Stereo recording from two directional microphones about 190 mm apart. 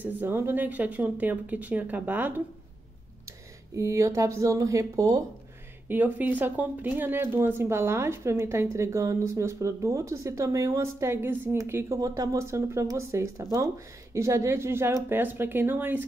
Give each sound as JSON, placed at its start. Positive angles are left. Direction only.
{"t": 0.0, "sound": "speech", "side_deg": -10}